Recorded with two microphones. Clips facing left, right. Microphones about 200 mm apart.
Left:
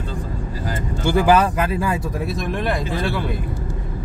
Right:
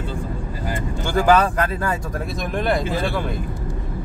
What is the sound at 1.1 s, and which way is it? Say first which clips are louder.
Speech: even; 5° left (ahead or behind).